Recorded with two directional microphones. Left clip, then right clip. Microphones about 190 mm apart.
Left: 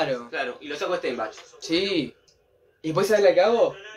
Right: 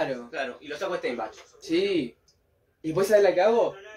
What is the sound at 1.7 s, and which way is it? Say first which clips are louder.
Speech: left 1 dB; 10° left (ahead or behind).